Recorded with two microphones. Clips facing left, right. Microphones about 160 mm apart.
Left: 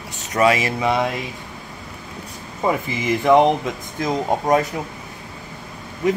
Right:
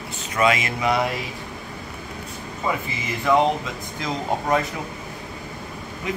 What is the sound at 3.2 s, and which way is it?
Speech, 60° left (ahead or behind).